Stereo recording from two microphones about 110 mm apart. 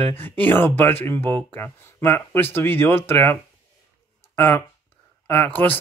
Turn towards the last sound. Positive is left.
turn(degrees=15)  # may be behind; listen again after turning